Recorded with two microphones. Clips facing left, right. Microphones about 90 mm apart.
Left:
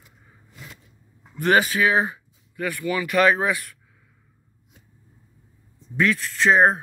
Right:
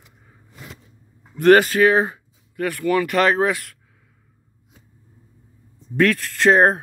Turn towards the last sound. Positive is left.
turn(degrees=-55)  # may be behind; listen again after turning